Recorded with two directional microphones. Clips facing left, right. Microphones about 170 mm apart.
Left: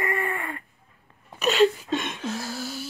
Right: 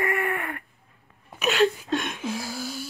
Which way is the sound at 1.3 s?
Centre (ahead or behind).